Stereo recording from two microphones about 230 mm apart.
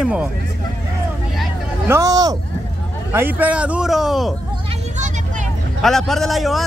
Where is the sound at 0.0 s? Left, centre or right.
Centre.